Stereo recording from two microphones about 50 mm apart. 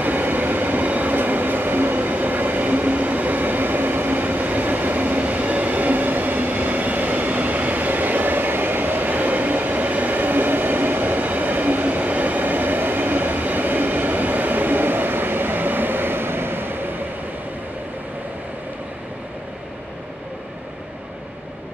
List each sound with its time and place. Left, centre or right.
0.0 s train: right